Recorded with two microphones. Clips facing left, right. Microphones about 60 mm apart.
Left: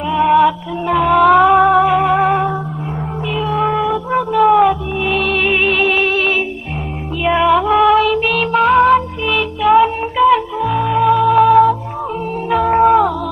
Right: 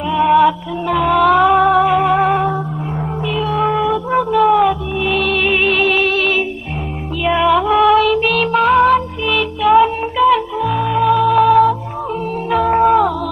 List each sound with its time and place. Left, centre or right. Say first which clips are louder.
0.1 s music: even; centre